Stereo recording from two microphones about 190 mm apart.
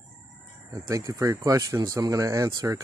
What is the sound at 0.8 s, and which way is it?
Speech, 15° right (ahead or behind).